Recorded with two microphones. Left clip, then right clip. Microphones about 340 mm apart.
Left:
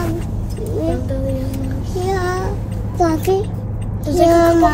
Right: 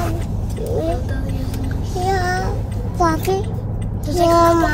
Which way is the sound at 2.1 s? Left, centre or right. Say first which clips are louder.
Right 1 dB; centre.